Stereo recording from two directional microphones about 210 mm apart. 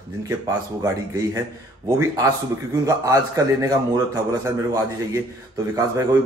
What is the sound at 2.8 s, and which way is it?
A man's voice, 15° right (ahead or behind).